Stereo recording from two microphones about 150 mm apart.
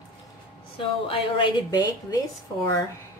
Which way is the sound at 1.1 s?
35° left (ahead or behind).